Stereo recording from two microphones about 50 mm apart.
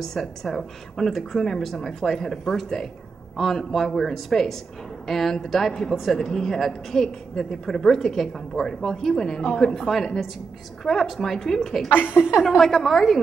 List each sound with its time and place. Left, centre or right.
0.0 s speech: centre
12.2 s a woman's voice: centre
12.4 s speech: centre